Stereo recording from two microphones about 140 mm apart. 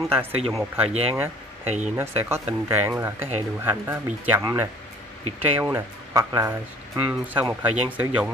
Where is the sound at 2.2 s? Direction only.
15° right (ahead or behind).